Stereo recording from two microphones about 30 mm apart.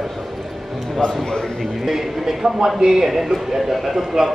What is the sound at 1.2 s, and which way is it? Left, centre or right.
Speech, centre.